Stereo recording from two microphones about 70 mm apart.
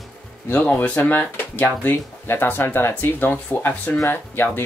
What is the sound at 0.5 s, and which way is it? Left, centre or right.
Speech, left.